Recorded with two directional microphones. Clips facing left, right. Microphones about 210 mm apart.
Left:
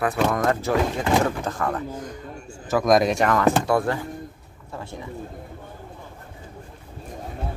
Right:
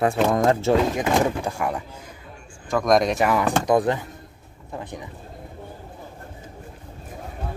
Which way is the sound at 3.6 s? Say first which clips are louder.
Right 2 dB; 20° right (ahead or behind).